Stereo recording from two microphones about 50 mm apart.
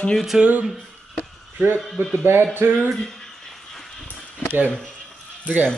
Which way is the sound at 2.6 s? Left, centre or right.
Right.